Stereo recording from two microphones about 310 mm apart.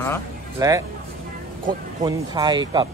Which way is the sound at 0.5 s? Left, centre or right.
Centre.